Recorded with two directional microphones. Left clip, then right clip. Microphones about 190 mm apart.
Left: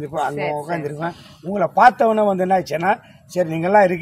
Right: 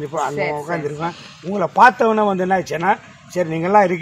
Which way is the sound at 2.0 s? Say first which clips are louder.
Even; 25° left (ahead or behind).